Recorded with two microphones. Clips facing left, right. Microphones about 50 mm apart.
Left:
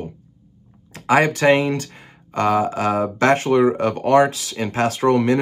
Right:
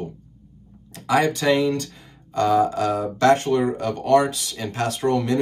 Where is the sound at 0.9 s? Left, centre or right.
Left.